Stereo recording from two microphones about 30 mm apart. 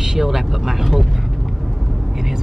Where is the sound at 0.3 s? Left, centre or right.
Centre.